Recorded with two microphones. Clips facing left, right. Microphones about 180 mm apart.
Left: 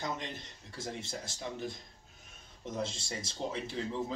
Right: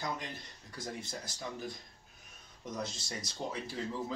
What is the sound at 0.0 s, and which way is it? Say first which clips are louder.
Speech: left 1 dB; 25° left (ahead or behind).